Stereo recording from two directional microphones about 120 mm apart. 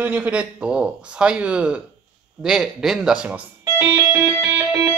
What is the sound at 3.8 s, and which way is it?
Music, 25° right (ahead or behind).